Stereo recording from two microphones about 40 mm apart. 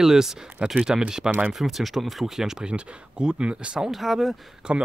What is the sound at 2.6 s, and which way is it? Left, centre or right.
Speech, right.